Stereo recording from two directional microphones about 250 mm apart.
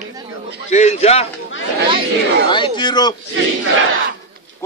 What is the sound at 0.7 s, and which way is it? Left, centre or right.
Speech, left.